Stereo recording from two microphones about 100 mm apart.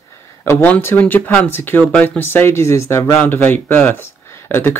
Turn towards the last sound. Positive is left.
turn(degrees=20)  # may be behind; listen again after turning